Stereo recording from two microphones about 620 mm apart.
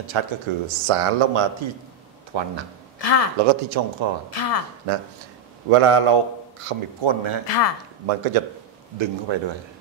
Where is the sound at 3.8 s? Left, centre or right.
Right.